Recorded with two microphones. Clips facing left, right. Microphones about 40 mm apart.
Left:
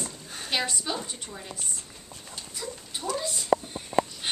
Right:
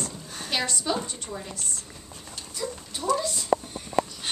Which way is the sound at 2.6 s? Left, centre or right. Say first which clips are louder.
Right 4 dB; centre.